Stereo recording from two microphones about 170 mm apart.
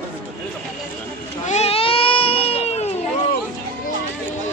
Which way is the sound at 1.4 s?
40° left (ahead or behind).